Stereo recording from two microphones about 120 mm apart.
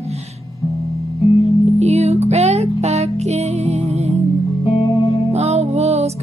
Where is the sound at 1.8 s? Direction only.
60° right (ahead or behind).